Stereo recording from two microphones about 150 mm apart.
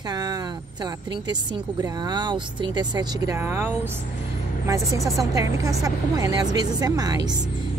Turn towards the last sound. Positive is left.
turn(degrees=-25)  # may be behind; listen again after turning